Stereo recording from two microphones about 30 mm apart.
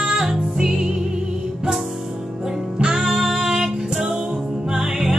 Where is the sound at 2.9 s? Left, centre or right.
Centre.